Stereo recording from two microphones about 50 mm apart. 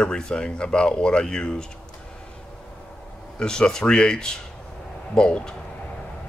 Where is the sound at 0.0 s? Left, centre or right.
Centre.